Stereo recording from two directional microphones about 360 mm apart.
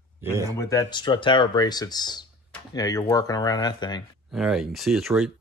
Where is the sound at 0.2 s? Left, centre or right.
Centre.